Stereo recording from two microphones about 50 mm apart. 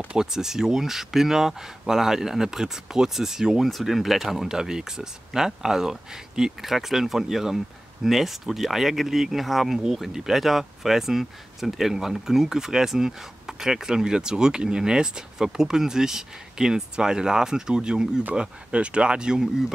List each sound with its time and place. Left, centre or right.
0.1 s speech: centre